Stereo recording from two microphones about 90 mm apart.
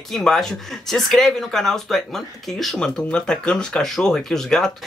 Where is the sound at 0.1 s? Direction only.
5° left (ahead or behind).